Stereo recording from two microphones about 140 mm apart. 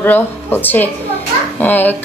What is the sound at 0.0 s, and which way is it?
A woman's voice, 15° left (ahead or behind).